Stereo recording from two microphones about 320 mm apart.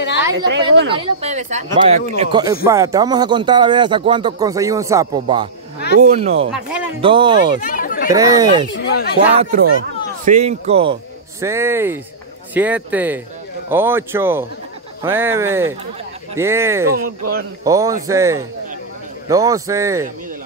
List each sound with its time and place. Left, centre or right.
0.5 s a woman's voice: right
0.9 s speech: centre
6.5 s a man's voice: centre
7.0 s speech: centre
7.6 s chatter: left
8.1 s speech: centre
8.7 s speech: left
9.4 s a man's voice: right; by 16.9 s centre
16.9 s speech: right
17.6 s speech: centre